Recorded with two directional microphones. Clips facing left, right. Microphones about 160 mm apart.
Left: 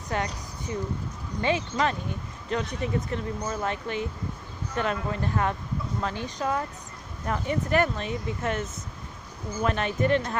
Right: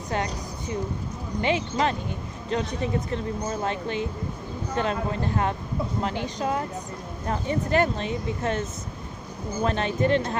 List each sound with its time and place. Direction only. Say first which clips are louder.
1.4 s speech: right 1 dB; 30° right (ahead or behind)